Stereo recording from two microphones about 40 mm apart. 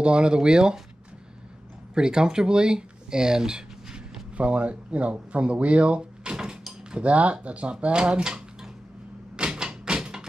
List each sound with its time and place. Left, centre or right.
0.0 s speech: right
2.0 s speech: centre
4.4 s speech: right
7.0 s speech: right; by 8.6 s centre
9.4 s tap: right